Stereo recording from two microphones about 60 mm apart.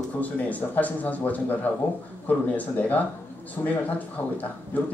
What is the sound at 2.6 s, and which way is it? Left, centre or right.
A man's voice, left.